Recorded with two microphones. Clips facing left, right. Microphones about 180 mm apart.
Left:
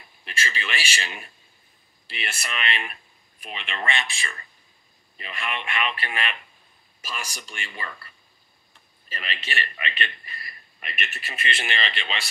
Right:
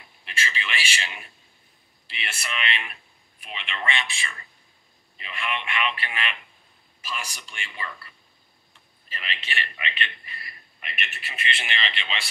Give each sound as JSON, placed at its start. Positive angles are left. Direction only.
{"t": 0.2, "sound": "a man's voice", "side_deg": 45}
{"t": 9.1, "sound": "a man's voice", "side_deg": 45}